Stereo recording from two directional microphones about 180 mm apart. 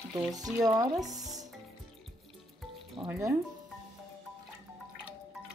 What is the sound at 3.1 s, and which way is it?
Speech, 15° right (ahead or behind).